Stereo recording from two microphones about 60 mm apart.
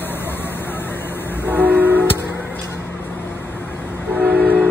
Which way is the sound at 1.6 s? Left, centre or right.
Left.